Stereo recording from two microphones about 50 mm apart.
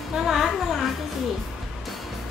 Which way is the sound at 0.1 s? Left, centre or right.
Centre.